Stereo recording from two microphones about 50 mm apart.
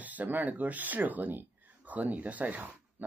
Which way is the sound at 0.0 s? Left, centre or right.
Right.